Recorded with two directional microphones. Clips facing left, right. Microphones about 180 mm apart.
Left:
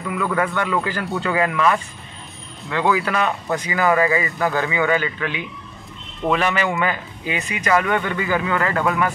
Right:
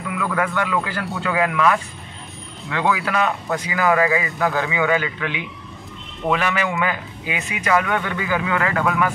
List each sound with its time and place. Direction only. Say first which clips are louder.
0.4 s speech: right 1 dB; 5° right (ahead or behind)
2.9 s speech: left 1 dB; centre (ahead or behind)
4.6 s speech: left 1 dB; 15° right (ahead or behind)